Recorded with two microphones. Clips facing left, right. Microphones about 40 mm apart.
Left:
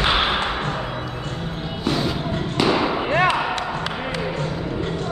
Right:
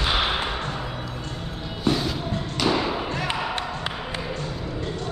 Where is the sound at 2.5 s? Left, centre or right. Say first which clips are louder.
Left 4 dB; left.